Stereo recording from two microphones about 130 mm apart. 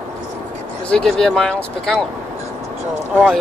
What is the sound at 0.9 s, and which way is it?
Speech, 5° left (ahead or behind).